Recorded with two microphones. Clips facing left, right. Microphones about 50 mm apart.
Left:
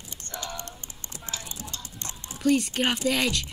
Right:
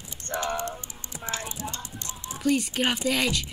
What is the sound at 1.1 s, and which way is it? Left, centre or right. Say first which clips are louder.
Typing: right 5 dB; right.